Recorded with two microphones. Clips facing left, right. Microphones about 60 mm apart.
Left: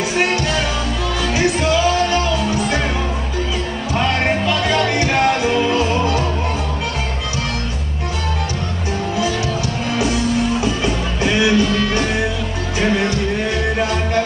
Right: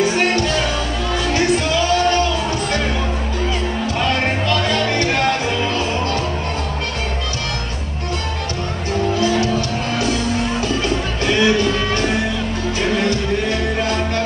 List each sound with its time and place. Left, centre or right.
4.0 s music: centre